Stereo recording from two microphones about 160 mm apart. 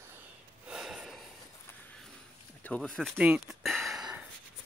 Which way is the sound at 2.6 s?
5° left (ahead or behind).